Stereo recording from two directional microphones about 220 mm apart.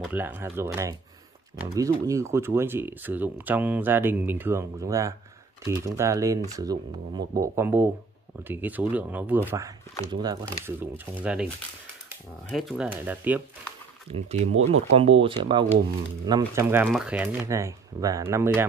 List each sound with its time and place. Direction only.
0.0 s speech: 10° right (ahead or behind)
12.4 s speech: centre (ahead or behind)
14.1 s speech: 30° right (ahead or behind); by 18.7 s 10° right (ahead or behind)